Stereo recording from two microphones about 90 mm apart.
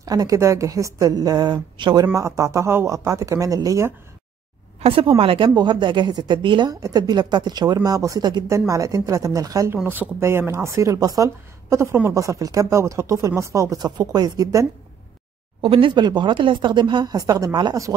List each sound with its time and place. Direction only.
0.0 s a woman's voice: 40° right (ahead or behind)
2.1 s a woman's voice: 35° right (ahead or behind)
4.8 s speech: 90° right
5.5 s speech: 55° right (ahead or behind)
6.7 s a woman's voice: 45° right (ahead or behind)
9.8 s a woman's voice: 25° right (ahead or behind)
13.7 s a woman's voice: 50° right (ahead or behind)
15.6 s speech: 75° right (ahead or behind); by 17.7 s 50° right (ahead or behind)